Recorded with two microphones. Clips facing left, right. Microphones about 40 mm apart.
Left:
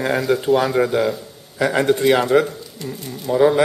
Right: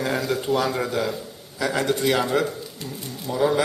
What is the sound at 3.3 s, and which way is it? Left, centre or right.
Speech, left.